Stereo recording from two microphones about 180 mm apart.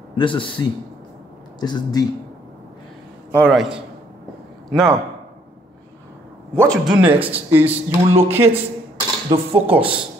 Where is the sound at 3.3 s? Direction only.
5° left (ahead or behind).